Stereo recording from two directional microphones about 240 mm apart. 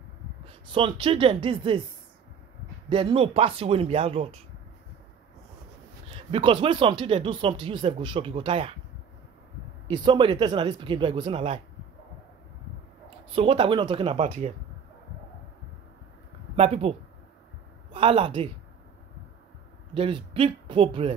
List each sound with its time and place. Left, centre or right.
0.5 s speech: right
2.9 s speech: right
6.1 s speech: right
9.8 s speech: right
13.3 s speech: right
16.5 s speech: right
17.9 s speech: right
19.9 s speech: right